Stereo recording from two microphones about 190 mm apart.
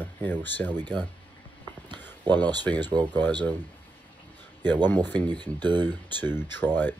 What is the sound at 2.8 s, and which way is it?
Speech, 20° right (ahead or behind).